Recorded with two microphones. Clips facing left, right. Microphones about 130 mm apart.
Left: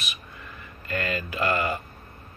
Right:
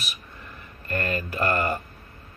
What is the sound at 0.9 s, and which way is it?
Speech, 45° right (ahead or behind).